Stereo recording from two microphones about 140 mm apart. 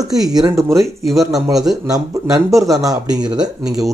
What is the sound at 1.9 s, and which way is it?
Speech, 25° right (ahead or behind).